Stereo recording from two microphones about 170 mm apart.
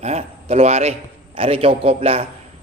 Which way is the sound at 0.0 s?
40° right (ahead or behind).